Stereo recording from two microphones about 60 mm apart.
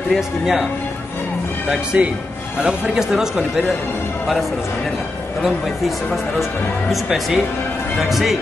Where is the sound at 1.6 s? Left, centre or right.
Centre.